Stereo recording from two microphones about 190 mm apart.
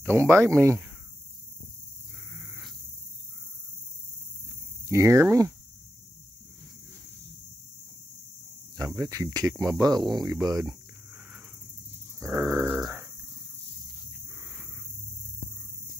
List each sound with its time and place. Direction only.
0.2 s speech: 15° right (ahead or behind)
4.8 s speech: 15° right (ahead or behind)
8.7 s speech: 15° right (ahead or behind)
12.2 s speech: 10° right (ahead or behind)
12.8 s a sound: 15° right (ahead or behind)